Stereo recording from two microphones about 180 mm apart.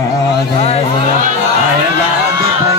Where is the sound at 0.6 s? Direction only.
35° left (ahead or behind).